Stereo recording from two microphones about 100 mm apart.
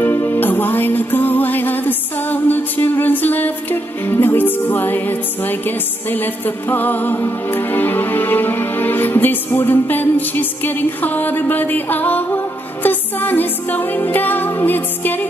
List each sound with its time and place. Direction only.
0.0 s music: 25° left (ahead or behind)